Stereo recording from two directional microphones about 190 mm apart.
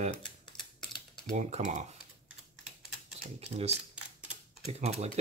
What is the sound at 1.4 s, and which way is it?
Speech, 40° right (ahead or behind).